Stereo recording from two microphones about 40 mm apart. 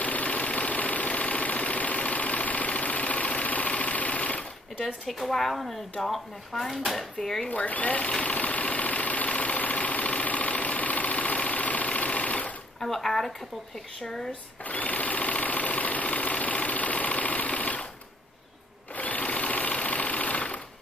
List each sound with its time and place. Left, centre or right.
0.0 s engine: left
5.3 s speech: centre
7.4 s speech: left
8.2 s vehicle: left
12.8 s speech: centre
14.6 s sewing machine: left
18.9 s sewing machine: left